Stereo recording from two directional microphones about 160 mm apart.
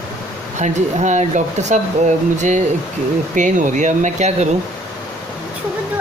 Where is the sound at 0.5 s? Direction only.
45° right (ahead or behind).